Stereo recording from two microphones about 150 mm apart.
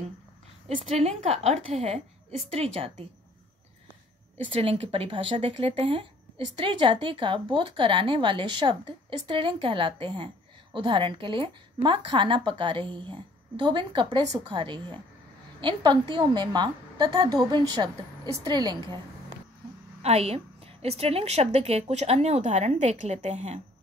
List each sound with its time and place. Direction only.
0.8 s a woman's voice: 45° right (ahead or behind)
4.5 s a woman's voice: 40° right (ahead or behind)
20.0 s a woman's voice: 45° right (ahead or behind)